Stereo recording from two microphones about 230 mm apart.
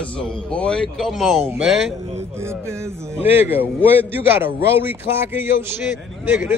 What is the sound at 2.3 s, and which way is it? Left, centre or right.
A man's voice, centre.